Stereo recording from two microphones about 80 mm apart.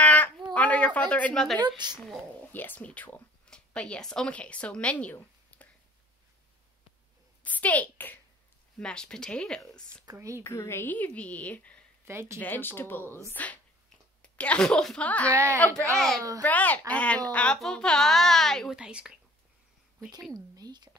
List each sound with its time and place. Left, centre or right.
0.0 s a sound: left
0.5 s speech: centre
1.8 s speech: right
2.5 s speech: left
5.5 s a sound: left
7.4 s a woman's voice: centre
8.7 s speech: centre
10.4 s a woman's voice: left; by 11.8 s centre
12.1 s speech: right
12.4 s a woman's voice: left; by 15.0 s centre
15.0 s a woman's voice: centre
18.7 s a woman's voice: centre
20.3 s speech: right